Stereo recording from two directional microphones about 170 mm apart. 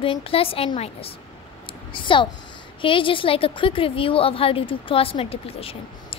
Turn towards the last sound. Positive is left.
turn(degrees=35)  # may be behind; listen again after turning